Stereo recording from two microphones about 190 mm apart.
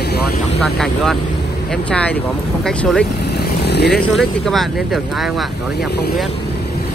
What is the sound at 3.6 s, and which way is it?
Vehicle, 60° left (ahead or behind).